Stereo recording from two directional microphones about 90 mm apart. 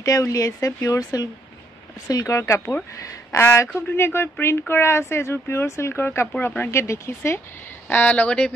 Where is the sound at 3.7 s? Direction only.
25° left (ahead or behind).